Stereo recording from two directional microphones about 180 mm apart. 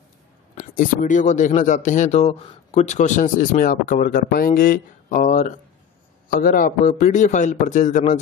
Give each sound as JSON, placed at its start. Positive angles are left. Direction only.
{"t": 0.6, "sound": "speech", "side_deg": 45}